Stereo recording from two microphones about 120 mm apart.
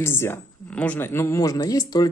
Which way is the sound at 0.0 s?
20° left (ahead or behind).